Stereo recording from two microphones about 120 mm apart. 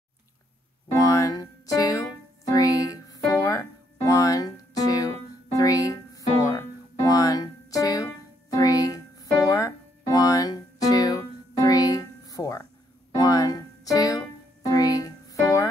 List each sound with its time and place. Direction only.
0.9 s music: 30° left (ahead or behind)